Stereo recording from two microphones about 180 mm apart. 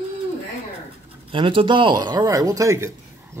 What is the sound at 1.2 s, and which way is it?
Speech, 30° right (ahead or behind).